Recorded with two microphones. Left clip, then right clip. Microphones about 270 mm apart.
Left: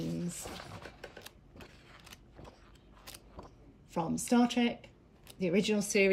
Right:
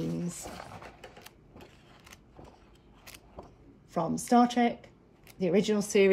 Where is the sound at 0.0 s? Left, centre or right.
Centre.